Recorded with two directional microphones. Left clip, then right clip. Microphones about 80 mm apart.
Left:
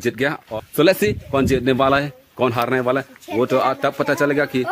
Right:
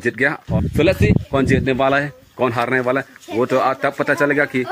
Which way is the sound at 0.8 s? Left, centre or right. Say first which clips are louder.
Left 1 dB; left.